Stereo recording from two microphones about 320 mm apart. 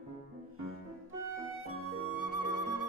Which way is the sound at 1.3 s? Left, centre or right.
Right.